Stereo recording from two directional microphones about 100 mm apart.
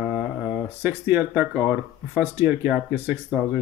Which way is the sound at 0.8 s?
15° right (ahead or behind).